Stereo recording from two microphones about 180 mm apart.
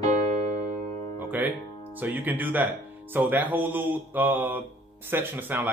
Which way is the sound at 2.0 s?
10° right (ahead or behind).